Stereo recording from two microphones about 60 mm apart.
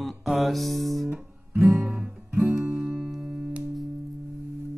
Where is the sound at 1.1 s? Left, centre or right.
Right.